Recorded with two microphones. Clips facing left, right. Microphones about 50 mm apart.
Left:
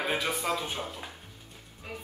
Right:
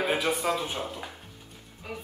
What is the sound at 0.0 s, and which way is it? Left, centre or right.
A man's voice, centre.